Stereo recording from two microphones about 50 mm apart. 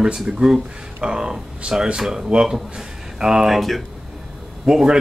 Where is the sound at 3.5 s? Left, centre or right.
Centre.